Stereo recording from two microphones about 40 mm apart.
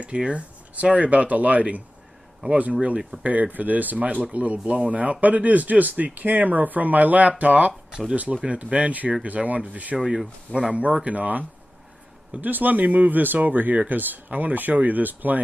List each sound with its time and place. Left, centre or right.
0.0 s speech: right
3.0 s speech: centre
3.3 s speech: right